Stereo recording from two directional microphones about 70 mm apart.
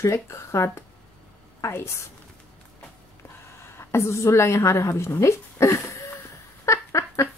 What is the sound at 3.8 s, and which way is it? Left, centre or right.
A woman's voice, left.